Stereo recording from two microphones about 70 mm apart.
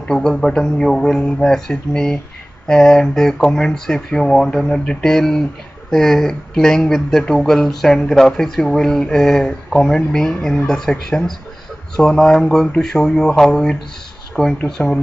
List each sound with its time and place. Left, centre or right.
0.1 s speech: centre
14.6 s speech: left